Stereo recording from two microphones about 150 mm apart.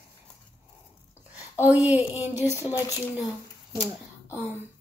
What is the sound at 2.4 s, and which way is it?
Speech, 20° left (ahead or behind).